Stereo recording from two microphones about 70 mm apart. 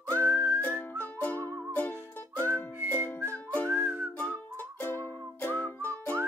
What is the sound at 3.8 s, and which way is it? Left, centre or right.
Whistling, right.